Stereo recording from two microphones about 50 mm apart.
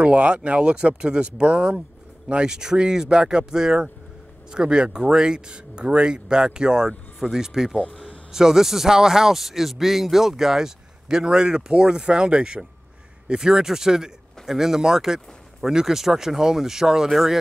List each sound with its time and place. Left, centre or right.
0.0 s speech: right
7.9 s a sound: centre
8.3 s speech: centre